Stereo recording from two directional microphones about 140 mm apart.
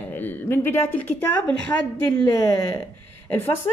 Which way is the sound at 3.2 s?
15° left (ahead or behind).